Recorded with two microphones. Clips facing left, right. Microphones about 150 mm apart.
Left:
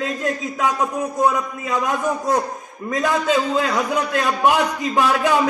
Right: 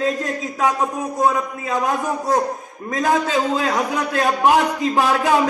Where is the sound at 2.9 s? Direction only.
35° right (ahead or behind).